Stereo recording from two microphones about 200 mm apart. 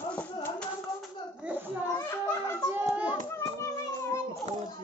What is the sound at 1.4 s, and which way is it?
Children playing, 5° right (ahead or behind).